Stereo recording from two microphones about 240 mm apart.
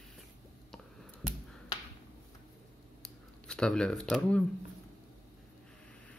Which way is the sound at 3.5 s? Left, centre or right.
Centre.